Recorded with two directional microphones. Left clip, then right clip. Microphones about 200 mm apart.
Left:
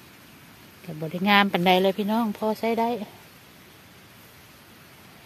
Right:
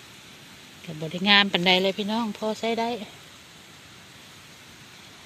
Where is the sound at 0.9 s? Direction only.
5° left (ahead or behind).